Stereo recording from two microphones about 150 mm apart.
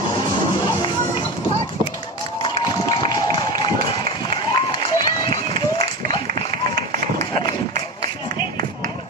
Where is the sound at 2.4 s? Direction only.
30° left (ahead or behind).